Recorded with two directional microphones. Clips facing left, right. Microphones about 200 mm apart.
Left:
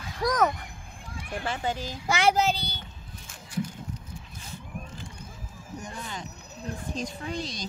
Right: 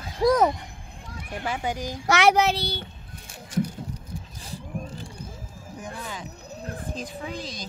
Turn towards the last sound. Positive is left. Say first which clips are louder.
# even
turn(degrees=-5)  # may be behind; listen again after turning